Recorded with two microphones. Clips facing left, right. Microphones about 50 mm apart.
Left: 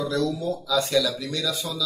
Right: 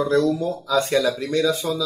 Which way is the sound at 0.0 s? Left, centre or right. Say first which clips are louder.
Right 6 dB; right.